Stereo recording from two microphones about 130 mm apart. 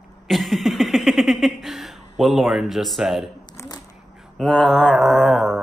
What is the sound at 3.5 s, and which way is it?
Shuffling cards, 30° left (ahead or behind).